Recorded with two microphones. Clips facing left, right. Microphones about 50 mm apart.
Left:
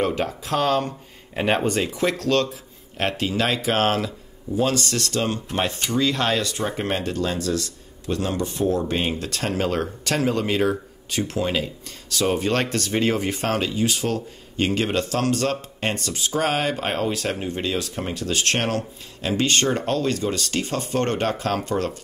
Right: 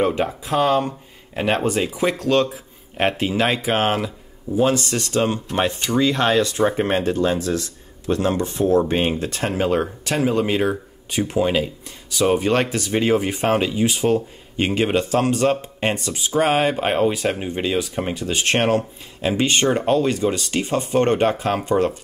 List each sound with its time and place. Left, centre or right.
0.0 s speech: centre
1.3 s speech: centre